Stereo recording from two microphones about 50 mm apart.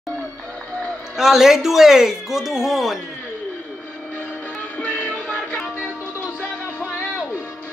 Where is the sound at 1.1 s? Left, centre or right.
Centre.